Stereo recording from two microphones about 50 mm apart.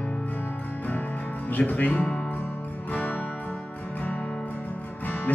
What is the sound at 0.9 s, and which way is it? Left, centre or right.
Music, left.